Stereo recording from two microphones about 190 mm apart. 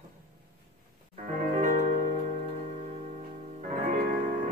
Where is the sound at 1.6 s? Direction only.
40° right (ahead or behind).